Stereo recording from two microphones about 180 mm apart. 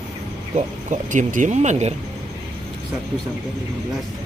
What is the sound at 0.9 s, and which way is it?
Speech, 45° right (ahead or behind).